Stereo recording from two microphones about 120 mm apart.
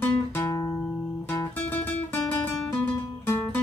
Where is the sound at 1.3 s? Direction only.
20° left (ahead or behind).